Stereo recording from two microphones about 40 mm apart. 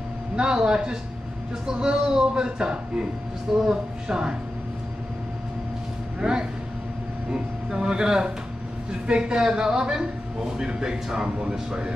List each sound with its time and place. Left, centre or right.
0.4 s a woman's voice: right
6.1 s speech: right
7.7 s a man's voice: centre